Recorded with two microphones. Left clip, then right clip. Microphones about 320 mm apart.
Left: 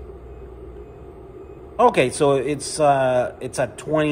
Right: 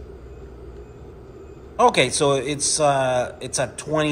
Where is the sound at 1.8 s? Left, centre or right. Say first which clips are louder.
Left 1 dB; centre.